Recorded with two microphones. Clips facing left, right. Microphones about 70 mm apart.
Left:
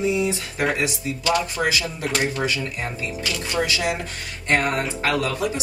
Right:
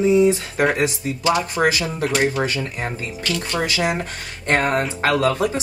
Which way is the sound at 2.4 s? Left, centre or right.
Right.